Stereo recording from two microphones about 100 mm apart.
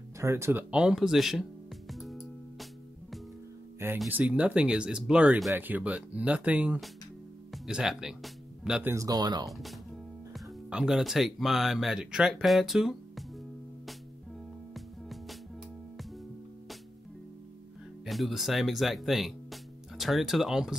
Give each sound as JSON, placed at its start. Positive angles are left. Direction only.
{"t": 0.2, "sound": "speech", "side_deg": -25}
{"t": 1.9, "sound": "music", "side_deg": 0}
{"t": 4.1, "sound": "speech", "side_deg": -15}
{"t": 8.8, "sound": "speech", "side_deg": -35}
{"t": 9.5, "sound": "speech", "side_deg": 0}
{"t": 14.7, "sound": "music", "side_deg": 0}
{"t": 18.0, "sound": "speech", "side_deg": 0}